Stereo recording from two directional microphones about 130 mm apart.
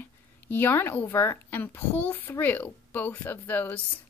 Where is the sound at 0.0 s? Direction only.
15° left (ahead or behind).